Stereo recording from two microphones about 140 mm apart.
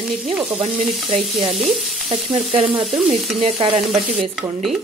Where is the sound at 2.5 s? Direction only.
45° right (ahead or behind).